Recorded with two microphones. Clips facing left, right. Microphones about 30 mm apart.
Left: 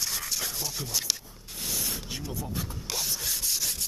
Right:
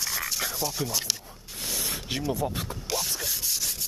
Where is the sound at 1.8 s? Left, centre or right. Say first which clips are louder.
Right 6 dB; right.